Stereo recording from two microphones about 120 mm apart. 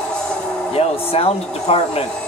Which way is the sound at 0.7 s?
55° left (ahead or behind).